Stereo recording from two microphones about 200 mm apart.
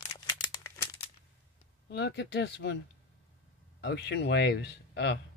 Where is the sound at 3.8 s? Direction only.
60° left (ahead or behind).